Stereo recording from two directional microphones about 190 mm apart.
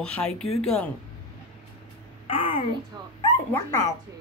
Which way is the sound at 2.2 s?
30° left (ahead or behind).